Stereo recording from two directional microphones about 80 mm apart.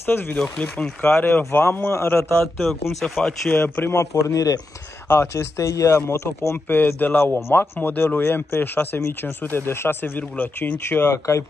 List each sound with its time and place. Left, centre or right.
0.0 s speech: left
0.4 s speech: centre
1.0 s speech: left
2.6 s speech: centre
3.6 s speech: left
3.9 s a man's voice: left
5.0 s speech: left